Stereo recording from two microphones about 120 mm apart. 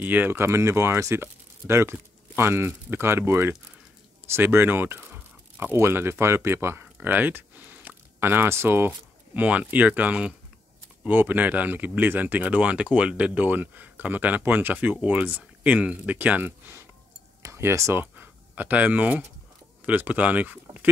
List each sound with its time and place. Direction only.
0.0 s speech: 15° right (ahead or behind)